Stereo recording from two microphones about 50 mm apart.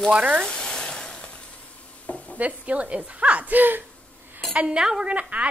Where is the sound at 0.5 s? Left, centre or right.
Centre.